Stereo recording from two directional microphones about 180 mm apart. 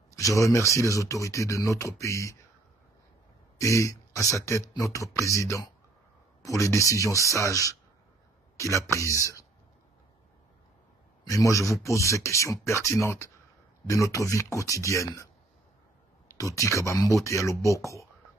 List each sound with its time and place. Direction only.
0.1 s speech: 20° left (ahead or behind)
3.5 s speech: 15° left (ahead or behind)
11.2 s speech: 20° left (ahead or behind)
16.3 s speech: 20° left (ahead or behind)